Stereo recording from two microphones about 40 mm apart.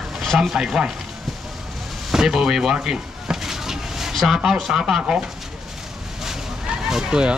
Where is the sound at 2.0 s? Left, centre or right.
Centre.